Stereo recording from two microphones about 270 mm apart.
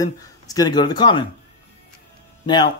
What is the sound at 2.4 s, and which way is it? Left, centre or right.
Speech, centre.